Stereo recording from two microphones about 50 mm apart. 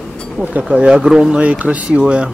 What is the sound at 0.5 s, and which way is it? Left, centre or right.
Speech, right.